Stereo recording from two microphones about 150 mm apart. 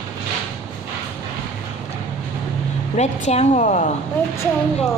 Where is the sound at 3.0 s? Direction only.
45° left (ahead or behind).